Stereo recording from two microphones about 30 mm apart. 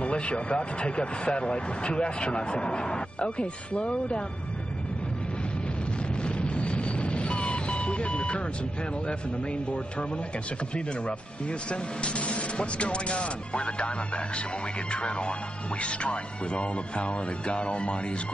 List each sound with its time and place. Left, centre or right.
0.0 s speech: left
6.2 s a sound: left
11.7 s speech: left